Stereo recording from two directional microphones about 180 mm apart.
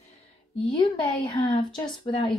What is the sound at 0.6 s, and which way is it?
A woman's voice, 25° left (ahead or behind).